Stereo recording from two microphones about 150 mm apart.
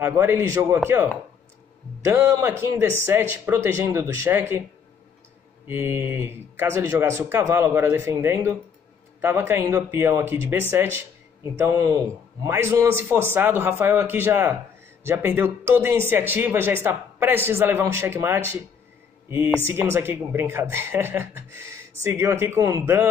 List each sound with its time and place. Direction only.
0.0 s speech: 15° right (ahead or behind)
2.0 s a man's voice: 20° right (ahead or behind)
5.7 s a man's voice: 15° right (ahead or behind)